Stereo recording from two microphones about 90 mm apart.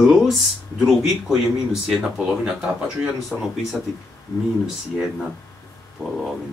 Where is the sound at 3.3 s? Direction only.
5° left (ahead or behind).